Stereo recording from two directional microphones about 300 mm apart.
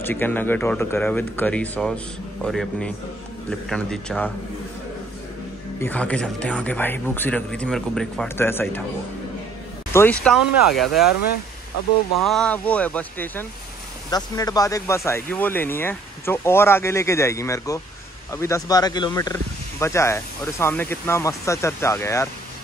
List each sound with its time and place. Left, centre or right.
0.0 s speech: centre
5.8 s speech: centre
9.9 s speech: centre
11.1 s speech: left
12.3 s speech: centre